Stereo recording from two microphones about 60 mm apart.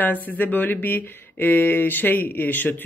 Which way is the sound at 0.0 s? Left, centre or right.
Left.